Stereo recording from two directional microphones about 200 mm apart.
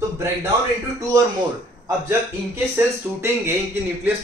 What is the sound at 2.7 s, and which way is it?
Speech, 10° right (ahead or behind).